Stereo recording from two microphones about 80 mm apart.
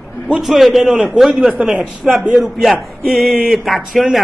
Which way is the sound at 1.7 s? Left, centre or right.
Centre.